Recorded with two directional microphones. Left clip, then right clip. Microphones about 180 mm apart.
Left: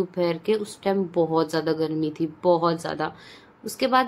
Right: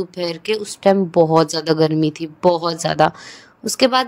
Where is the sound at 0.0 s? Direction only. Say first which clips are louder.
Right 1 dB; 50° right (ahead or behind).